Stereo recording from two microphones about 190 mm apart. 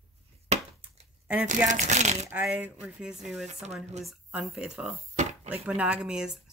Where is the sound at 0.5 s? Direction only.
35° right (ahead or behind).